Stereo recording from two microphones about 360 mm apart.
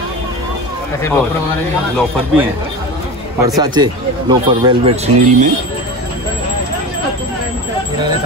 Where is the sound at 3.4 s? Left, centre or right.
Centre.